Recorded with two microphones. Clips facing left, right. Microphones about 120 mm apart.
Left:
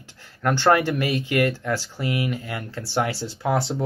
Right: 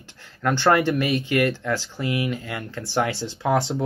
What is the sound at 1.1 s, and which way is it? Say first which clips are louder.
Speech: right 1 dB; 40° left (ahead or behind).